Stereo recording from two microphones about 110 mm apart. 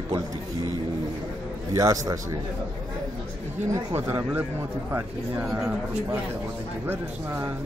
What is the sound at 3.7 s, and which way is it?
Speech, 25° right (ahead or behind).